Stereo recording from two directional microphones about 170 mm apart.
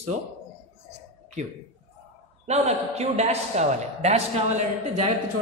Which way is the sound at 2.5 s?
40° right (ahead or behind).